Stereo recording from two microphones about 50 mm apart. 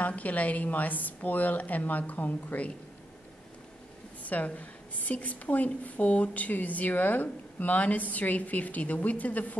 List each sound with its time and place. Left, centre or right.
0.0 s a woman's voice: left
4.2 s a woman's voice: left